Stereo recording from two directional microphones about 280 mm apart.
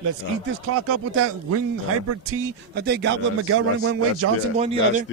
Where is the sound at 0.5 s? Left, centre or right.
Right.